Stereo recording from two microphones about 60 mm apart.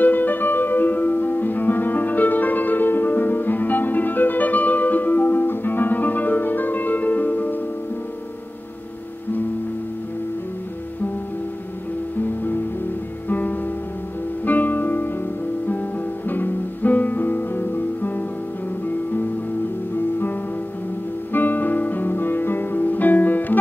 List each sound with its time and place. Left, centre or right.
0.0 s music: left
13.3 s music: left
16.3 s music: left
21.3 s guitar: left